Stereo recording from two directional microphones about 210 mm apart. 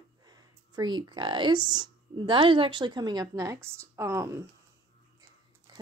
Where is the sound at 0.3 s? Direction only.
20° right (ahead or behind).